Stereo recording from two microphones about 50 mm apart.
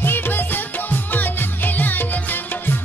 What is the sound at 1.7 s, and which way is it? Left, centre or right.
Music, left.